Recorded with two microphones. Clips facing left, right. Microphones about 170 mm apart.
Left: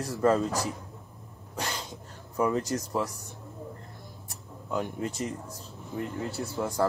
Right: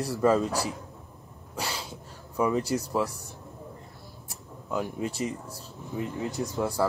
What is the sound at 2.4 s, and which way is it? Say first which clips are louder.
Speech: right 2 dB; centre (ahead or behind).